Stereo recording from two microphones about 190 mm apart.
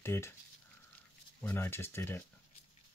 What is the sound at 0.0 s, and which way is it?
Speech, 15° left (ahead or behind).